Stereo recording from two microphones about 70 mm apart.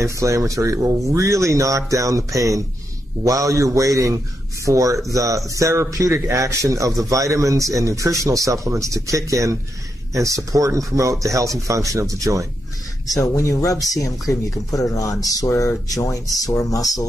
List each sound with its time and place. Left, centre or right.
0.0 s a man's voice: right
13.2 s speech: left